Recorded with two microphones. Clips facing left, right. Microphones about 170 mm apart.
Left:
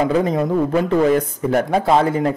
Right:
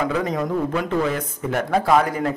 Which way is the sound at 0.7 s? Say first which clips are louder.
Left 7 dB; 35° left (ahead or behind).